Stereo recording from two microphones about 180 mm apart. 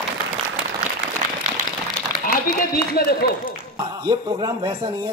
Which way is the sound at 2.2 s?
55° left (ahead or behind).